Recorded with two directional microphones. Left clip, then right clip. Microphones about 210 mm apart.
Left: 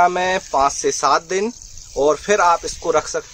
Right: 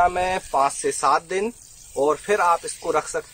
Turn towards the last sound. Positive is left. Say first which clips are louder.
# left 5 dB
turn(degrees=15)  # may be behind; listen again after turning